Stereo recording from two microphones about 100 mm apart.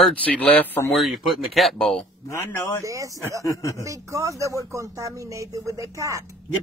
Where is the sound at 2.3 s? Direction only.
30° left (ahead or behind).